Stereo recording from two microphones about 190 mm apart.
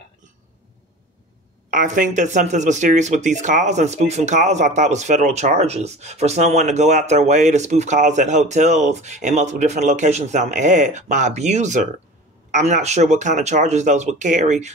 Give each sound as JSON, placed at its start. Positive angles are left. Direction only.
{"t": 1.7, "sound": "speech", "side_deg": -45}